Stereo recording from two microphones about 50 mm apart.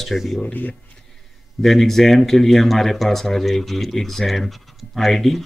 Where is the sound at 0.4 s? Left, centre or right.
Left.